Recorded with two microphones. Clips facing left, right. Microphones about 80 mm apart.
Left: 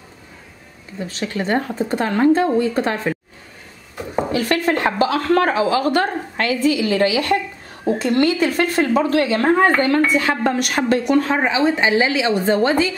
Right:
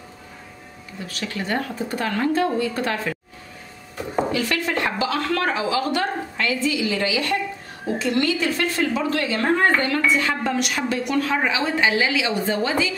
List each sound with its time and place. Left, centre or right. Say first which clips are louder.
1.0 s speech: left 5 dB; left
4.3 s speech: left 5 dB; left
11.1 s speech: left 5 dB; left
12.4 s speech: left 6 dB; left